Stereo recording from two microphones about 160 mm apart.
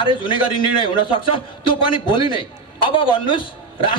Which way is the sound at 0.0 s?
30° left (ahead or behind).